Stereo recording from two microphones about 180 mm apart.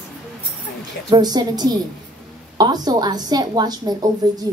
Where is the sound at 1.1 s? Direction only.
20° right (ahead or behind).